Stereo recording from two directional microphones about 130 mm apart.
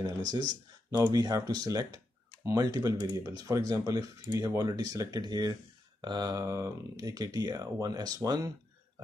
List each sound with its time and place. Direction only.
1.0 s speech: 25° right (ahead or behind)